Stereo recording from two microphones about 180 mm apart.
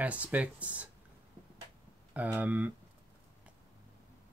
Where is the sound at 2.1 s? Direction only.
10° right (ahead or behind).